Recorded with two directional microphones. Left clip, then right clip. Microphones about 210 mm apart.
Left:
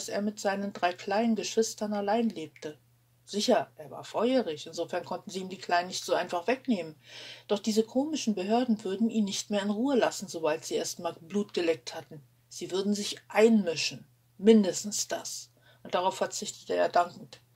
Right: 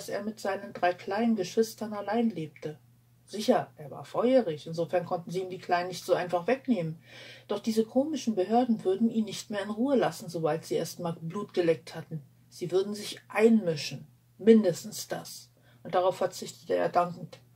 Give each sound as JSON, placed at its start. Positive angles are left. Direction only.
{"t": 0.0, "sound": "speech", "side_deg": 35}